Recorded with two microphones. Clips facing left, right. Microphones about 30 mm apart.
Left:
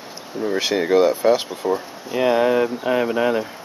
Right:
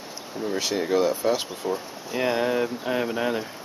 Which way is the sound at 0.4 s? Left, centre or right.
Centre.